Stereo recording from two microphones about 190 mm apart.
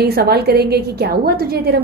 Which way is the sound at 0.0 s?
55° right (ahead or behind).